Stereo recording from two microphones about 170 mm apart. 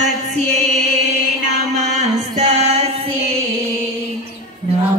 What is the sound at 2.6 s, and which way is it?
Female singing, 35° right (ahead or behind).